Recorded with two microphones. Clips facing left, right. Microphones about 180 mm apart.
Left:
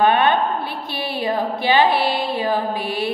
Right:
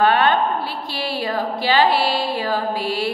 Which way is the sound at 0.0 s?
20° left (ahead or behind).